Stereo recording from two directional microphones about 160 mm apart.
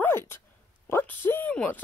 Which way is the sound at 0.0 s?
15° left (ahead or behind).